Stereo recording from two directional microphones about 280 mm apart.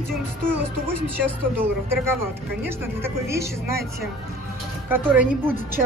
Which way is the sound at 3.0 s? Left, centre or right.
Centre.